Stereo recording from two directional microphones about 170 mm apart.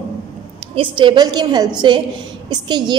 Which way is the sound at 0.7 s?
30° right (ahead or behind).